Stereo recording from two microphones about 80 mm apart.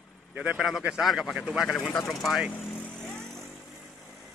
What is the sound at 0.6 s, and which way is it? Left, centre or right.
Speech, centre.